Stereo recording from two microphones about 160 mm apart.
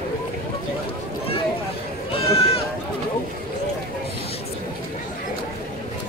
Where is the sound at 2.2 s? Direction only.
40° left (ahead or behind).